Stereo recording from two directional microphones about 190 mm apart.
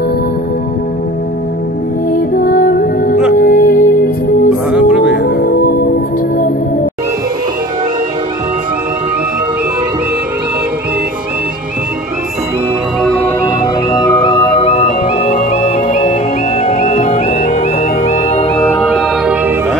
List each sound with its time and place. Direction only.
2.1 s music: 50° left (ahead or behind)
4.6 s music: 5° right (ahead or behind)
5.1 s music: 50° left (ahead or behind)
13.0 s music: 10° left (ahead or behind)
13.9 s music: 30° left (ahead or behind)
18.8 s music: centre (ahead or behind)